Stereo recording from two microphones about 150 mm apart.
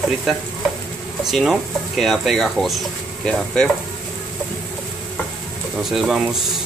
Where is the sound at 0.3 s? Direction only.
Centre (ahead or behind).